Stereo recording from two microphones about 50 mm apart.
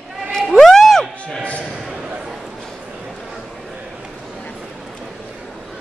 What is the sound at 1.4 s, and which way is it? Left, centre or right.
Speech, left.